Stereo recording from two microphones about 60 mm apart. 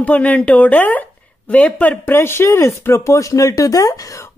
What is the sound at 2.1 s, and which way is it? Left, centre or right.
Speech, left.